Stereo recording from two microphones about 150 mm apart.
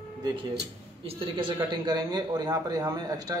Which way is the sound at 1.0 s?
35° right (ahead or behind).